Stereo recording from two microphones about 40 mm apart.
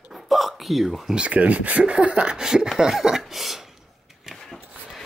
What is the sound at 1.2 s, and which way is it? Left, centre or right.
Speech, right.